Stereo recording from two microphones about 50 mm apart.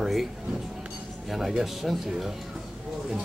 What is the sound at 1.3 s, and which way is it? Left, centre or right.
Speech, centre.